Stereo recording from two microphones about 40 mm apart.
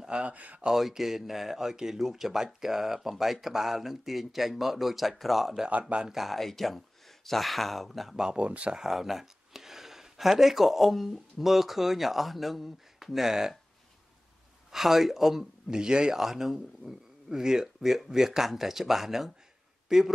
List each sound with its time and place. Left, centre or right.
0.1 s speech: right
0.4 s speech: right
0.7 s speech: centre
5.7 s speech: right
6.0 s speech: centre
8.2 s speech: right
8.5 s speech: right
8.7 s speech: centre
14.7 s speech: centre
15.8 s speech: centre
16.2 s speech: centre